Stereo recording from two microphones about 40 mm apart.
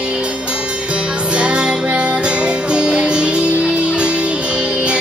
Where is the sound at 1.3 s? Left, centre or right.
Right.